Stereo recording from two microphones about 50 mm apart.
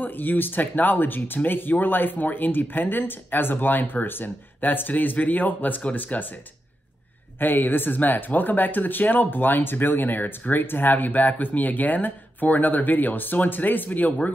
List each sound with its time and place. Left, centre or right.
0.0 s speech: left
7.3 s speech: left